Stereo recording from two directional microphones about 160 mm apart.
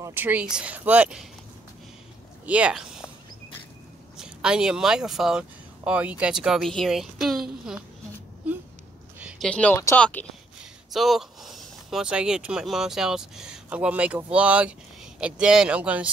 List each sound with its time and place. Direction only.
0.0 s speech: 10° right (ahead or behind)
2.4 s speech: 10° right (ahead or behind)
4.2 s speech: 5° right (ahead or behind)
9.2 s speech: 5° left (ahead or behind)
10.9 s speech: centre (ahead or behind)